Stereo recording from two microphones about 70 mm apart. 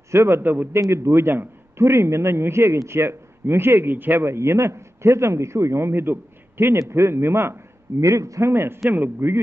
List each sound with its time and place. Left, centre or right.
0.1 s a man's voice: right
0.4 s a man's voice: right
0.7 s a man's voice: right
8.0 s a man's voice: right